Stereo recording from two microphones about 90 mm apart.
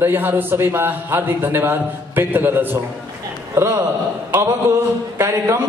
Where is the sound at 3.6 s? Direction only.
30° right (ahead or behind).